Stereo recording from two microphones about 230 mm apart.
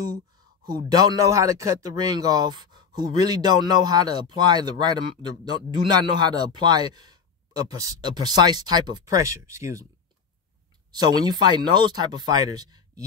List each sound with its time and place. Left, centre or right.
0.7 s speech: centre
10.9 s speech: centre